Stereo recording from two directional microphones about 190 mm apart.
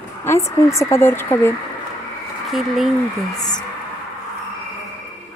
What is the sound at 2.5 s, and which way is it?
Speech, centre (ahead or behind).